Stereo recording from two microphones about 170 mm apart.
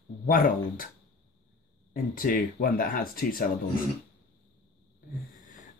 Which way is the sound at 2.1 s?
55° left (ahead or behind).